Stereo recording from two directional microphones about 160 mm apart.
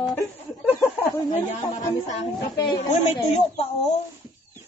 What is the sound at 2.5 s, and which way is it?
Speech, 25° left (ahead or behind).